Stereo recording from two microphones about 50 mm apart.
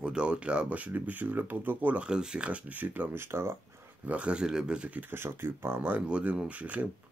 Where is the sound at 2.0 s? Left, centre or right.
Centre.